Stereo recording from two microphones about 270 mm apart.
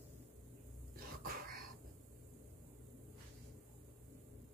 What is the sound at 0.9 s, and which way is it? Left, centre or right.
Cough, right.